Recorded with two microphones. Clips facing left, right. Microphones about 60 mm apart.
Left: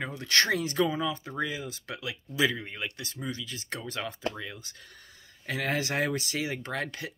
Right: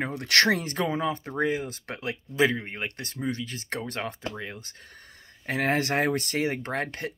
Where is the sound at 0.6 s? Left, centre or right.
Right.